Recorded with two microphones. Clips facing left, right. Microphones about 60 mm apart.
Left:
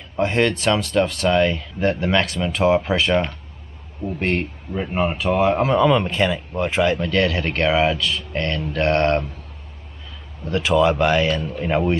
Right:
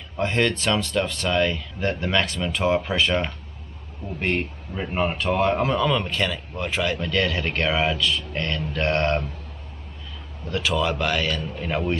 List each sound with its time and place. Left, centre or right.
0.2 s speech: centre
7.0 s speech: centre
10.5 s speech: centre
11.4 s speech: centre